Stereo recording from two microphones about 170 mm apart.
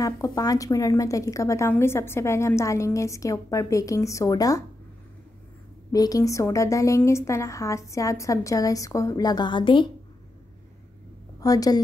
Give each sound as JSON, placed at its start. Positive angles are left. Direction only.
{"t": 0.0, "sound": "a woman's voice", "side_deg": 20}
{"t": 5.9, "sound": "a woman's voice", "side_deg": 20}
{"t": 11.4, "sound": "a woman's voice", "side_deg": 20}